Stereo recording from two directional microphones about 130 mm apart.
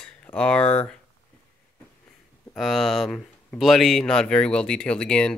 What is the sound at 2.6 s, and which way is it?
Speech, centre (ahead or behind).